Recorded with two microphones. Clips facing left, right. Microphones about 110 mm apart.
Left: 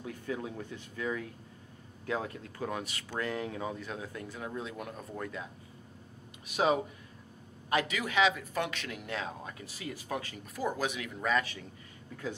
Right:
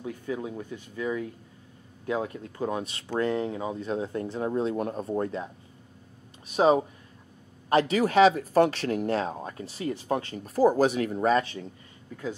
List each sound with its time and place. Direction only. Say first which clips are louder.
0.0 s speech: right 5 dB; 20° right (ahead or behind)
6.5 s speech: right 7 dB; 35° right (ahead or behind)